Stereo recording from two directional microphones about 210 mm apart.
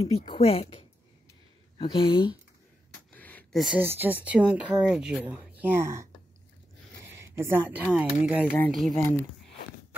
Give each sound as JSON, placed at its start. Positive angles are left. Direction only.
{"t": 0.0, "sound": "speech", "side_deg": 25}
{"t": 3.1, "sound": "a sound", "side_deg": 5}
{"t": 3.6, "sound": "speech", "side_deg": -10}
{"t": 7.3, "sound": "speech", "side_deg": -10}
{"t": 8.5, "sound": "speech", "side_deg": 5}